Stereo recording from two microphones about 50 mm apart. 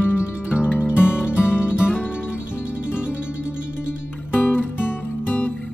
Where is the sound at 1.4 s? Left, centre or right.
Left.